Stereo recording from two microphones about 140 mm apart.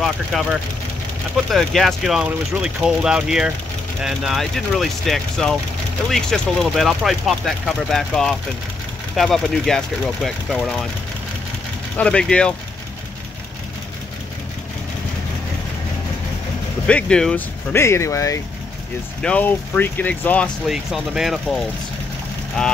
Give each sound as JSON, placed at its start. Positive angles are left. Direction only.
{"t": 0.0, "sound": "speech", "side_deg": 0}
{"t": 12.0, "sound": "speech", "side_deg": 5}
{"t": 16.8, "sound": "speech", "side_deg": 5}
{"t": 17.7, "sound": "speech", "side_deg": 20}
{"t": 19.2, "sound": "speech", "side_deg": 10}
{"t": 20.6, "sound": "speech", "side_deg": -5}